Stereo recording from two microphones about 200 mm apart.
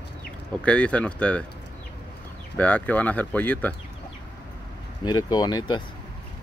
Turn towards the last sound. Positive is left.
turn(degrees=20)  # may be behind; listen again after turning